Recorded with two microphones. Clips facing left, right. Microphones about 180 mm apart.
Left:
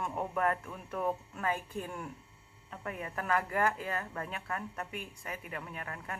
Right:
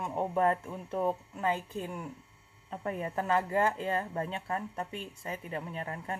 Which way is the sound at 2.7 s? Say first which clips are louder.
Right 5 dB; 30° right (ahead or behind).